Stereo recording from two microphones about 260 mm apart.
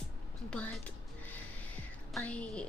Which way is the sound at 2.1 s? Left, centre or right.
Centre.